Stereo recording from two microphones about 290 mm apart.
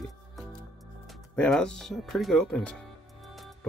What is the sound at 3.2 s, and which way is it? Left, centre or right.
Music, centre.